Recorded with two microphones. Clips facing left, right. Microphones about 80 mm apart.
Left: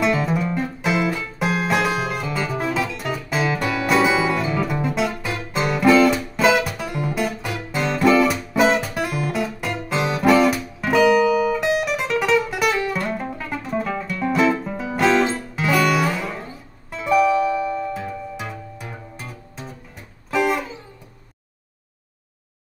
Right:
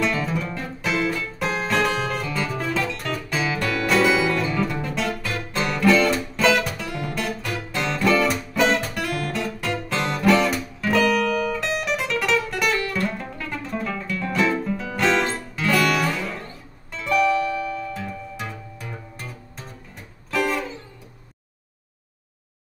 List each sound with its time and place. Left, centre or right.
0.0 s music: centre
14.7 s music: centre
15.0 s music: centre
17.5 s music: left
17.9 s music: centre